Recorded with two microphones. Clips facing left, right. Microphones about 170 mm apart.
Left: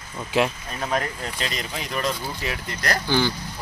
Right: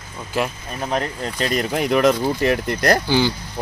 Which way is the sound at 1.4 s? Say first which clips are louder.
Right 13 dB; 50° right (ahead or behind).